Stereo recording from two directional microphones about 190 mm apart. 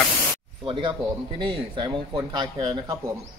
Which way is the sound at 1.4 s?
25° right (ahead or behind).